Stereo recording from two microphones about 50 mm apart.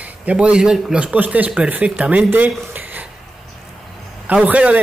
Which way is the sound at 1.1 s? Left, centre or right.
Right.